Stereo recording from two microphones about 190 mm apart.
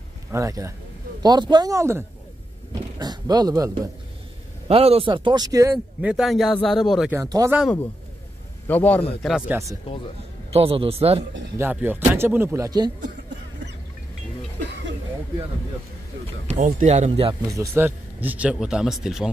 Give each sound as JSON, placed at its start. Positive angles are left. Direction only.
{"t": 0.3, "sound": "speech", "side_deg": -15}
{"t": 4.6, "sound": "speech", "side_deg": -30}
{"t": 5.9, "sound": "speech", "side_deg": -5}
{"t": 7.1, "sound": "speech", "side_deg": -15}
{"t": 8.6, "sound": "a man's voice", "side_deg": 10}
{"t": 9.2, "sound": "speech", "side_deg": -5}
{"t": 10.5, "sound": "speech", "side_deg": -30}
{"t": 11.5, "sound": "speech", "side_deg": -10}
{"t": 16.4, "sound": "speech", "side_deg": -35}
{"t": 17.6, "sound": "speech", "side_deg": -10}